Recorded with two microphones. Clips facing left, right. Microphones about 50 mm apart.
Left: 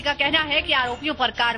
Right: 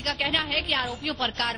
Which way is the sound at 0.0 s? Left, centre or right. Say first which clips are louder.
Left 5 dB; left.